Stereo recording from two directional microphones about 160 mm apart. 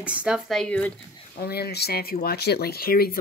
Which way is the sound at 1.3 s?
80° left.